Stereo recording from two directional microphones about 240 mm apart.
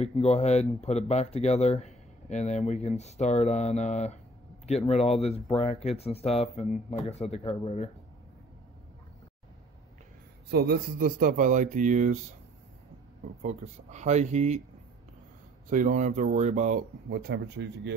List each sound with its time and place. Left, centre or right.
0.0 s speech: left
10.5 s speech: right
13.4 s speech: right
15.7 s speech: right